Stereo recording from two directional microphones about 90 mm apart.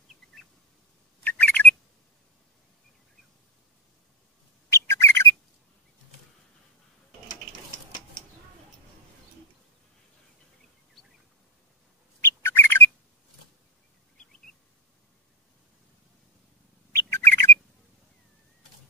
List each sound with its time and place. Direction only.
1.2 s bird: 15° left (ahead or behind)
4.6 s bird: 30° left (ahead or behind)
12.2 s bird: 25° left (ahead or behind)
14.1 s a sound: 5° left (ahead or behind)
16.9 s bird: 25° left (ahead or behind)